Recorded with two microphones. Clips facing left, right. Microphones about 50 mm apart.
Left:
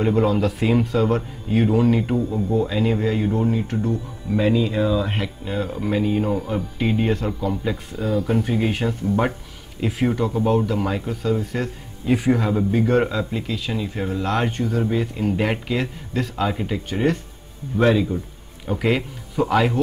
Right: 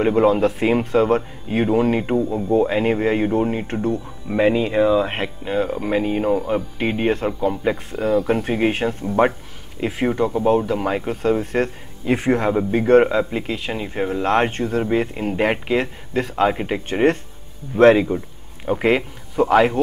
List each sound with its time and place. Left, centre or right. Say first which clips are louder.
0.0 s speech: right 3 dB; right
7.7 s speech: right 4 dB; centre
8.5 s speech: right 3 dB; right
11.2 s speech: right 5 dB; right
12.4 s speech: right 2 dB; right
18.7 s speech: right 3 dB; right